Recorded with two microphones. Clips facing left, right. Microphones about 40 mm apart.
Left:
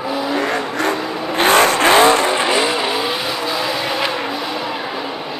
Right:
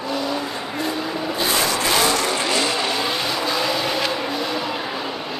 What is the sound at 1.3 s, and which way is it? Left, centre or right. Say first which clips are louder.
Vehicle: left 10 dB; left.